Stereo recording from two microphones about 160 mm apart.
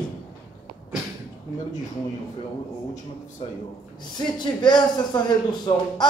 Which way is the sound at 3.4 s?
40° left (ahead or behind).